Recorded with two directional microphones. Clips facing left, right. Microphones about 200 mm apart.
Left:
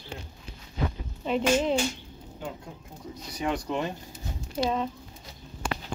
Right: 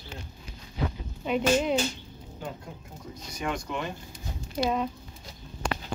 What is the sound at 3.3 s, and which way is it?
Speech, 35° left (ahead or behind).